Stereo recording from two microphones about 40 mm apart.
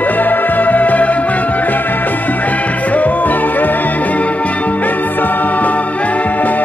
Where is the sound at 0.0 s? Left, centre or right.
Left.